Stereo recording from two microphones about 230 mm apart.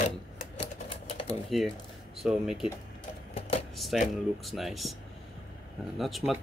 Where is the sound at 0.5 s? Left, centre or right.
Left.